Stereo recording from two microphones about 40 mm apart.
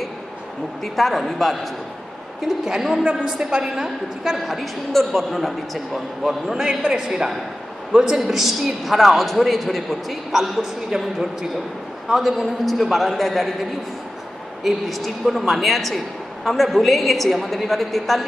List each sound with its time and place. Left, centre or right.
0.8 s a man's voice: centre
2.4 s a woman's voice: centre
6.2 s a woman's voice: centre
8.2 s a man's voice: centre
14.6 s a man's voice: centre